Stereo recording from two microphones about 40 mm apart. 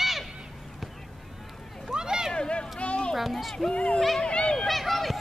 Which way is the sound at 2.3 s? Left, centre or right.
Left.